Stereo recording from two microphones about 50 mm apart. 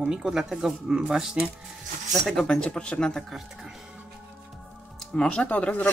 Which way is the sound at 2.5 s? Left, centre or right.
Centre.